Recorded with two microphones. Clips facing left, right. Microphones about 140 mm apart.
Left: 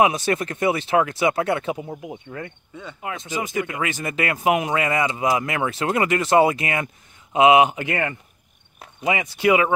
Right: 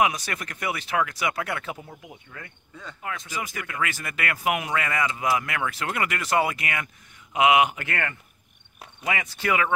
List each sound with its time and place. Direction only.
0.0 s speech: 25° left (ahead or behind)